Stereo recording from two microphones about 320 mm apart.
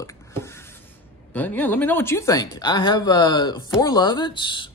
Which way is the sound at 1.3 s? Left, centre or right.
Centre.